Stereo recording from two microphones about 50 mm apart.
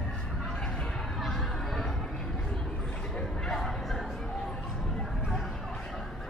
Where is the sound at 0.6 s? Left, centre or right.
Centre.